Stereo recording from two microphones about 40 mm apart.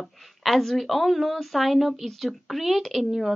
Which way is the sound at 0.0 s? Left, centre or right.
Centre.